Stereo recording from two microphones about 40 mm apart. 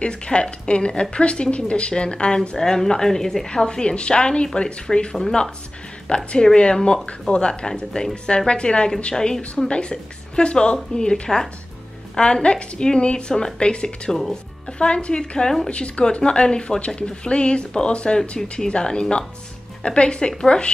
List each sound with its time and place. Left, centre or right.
0.0 s a woman's voice: left
9.7 s speech: left
14.1 s speech: centre